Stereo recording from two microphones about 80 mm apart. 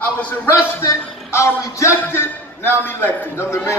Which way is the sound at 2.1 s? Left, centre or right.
Left.